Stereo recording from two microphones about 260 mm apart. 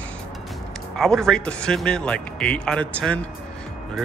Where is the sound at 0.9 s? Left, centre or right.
Centre.